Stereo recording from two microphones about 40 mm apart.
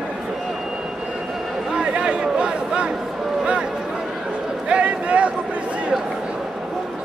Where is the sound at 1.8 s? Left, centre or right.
Right.